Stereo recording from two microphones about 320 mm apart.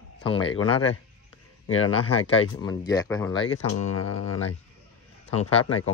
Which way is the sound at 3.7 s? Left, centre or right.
Left.